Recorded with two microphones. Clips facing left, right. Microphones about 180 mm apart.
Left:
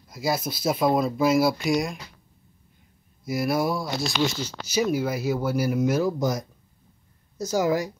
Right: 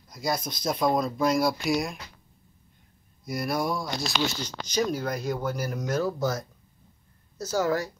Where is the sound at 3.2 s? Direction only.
5° left (ahead or behind).